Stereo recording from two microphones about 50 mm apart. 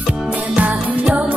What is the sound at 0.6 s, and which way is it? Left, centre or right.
Music, right.